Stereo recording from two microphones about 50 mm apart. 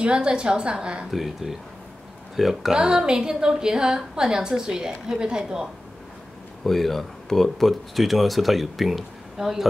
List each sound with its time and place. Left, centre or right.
0.0 s a woman's voice: centre
1.1 s speech: centre
2.8 s a woman's voice: centre
6.6 s speech: centre